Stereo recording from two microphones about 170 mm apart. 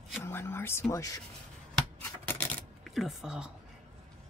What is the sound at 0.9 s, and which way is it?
Speech, 20° left (ahead or behind).